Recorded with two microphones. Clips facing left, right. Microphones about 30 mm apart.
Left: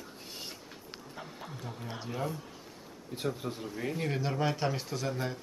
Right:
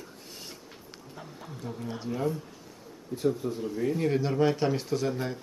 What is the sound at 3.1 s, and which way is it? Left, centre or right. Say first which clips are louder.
Speech: right 6 dB; left.